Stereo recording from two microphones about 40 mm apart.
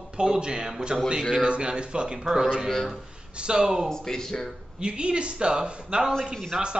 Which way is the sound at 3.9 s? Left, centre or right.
Centre.